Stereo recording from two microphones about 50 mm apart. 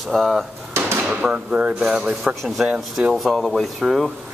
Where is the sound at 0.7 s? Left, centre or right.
Right.